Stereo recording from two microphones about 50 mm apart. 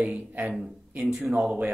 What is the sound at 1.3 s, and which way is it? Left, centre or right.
Speech, right.